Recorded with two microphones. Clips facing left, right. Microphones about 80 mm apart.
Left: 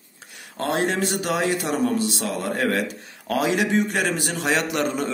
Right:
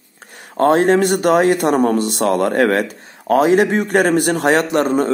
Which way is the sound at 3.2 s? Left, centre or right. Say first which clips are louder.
Right 9 dB; right.